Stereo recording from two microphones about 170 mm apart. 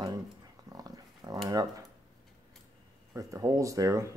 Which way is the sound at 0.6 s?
20° right (ahead or behind).